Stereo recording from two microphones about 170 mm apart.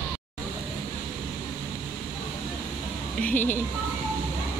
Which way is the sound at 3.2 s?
10° left (ahead or behind).